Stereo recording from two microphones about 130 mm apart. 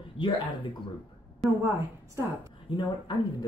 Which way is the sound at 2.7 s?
35° left (ahead or behind).